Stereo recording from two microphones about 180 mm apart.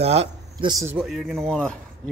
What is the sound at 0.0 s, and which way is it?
Speech, 35° right (ahead or behind).